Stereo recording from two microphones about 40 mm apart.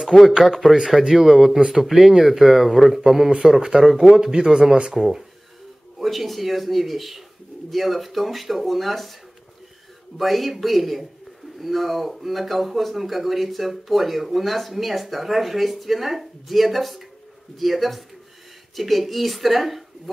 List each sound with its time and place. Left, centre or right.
0.4 s speech: centre
3.3 s speech: right
5.9 s speech: centre
10.1 s speech: centre